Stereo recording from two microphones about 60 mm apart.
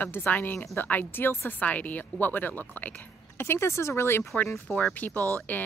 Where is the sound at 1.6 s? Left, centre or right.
Left.